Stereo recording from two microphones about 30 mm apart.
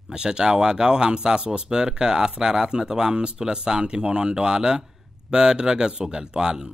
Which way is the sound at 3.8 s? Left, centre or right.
Right.